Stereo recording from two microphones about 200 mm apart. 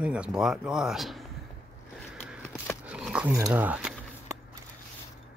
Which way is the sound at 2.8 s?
5° right (ahead or behind).